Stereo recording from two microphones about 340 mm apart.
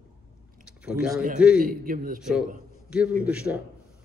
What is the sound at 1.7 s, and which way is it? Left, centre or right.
Speech, right.